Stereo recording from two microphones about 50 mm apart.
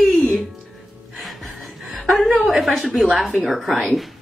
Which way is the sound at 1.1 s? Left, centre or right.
Centre.